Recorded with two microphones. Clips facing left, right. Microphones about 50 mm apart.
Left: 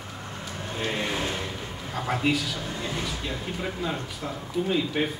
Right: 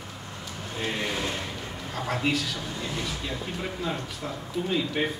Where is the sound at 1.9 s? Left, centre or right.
Centre.